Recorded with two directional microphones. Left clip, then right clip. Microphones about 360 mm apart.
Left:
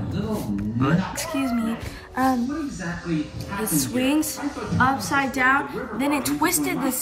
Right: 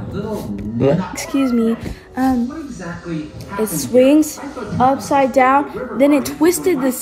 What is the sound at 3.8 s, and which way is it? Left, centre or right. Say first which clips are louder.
Speech: right 12 dB; centre.